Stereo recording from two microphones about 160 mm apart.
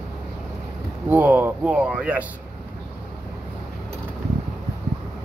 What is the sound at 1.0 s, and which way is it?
Speech, 10° right (ahead or behind).